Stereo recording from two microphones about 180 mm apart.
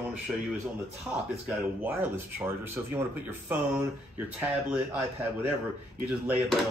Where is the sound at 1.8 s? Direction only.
10° right (ahead or behind).